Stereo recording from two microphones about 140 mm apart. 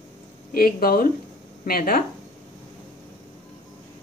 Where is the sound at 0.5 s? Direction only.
90° left.